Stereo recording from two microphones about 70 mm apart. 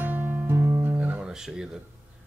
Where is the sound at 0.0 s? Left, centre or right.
Right.